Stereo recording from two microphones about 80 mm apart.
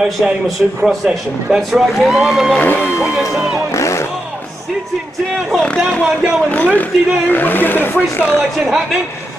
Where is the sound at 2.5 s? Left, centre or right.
Left.